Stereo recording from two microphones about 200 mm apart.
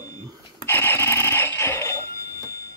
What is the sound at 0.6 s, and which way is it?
Telephone bell ringing, 10° left (ahead or behind).